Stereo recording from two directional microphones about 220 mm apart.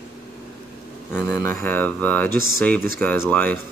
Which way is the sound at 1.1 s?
10° left (ahead or behind).